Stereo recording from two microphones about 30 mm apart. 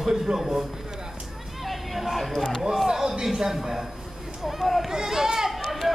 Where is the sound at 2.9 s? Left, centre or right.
Centre.